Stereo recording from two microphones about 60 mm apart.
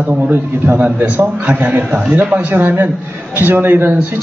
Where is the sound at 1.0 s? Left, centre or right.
Right.